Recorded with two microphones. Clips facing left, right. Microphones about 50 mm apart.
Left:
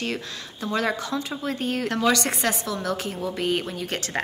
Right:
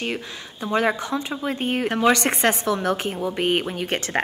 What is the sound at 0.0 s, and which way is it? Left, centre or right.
Speech, centre.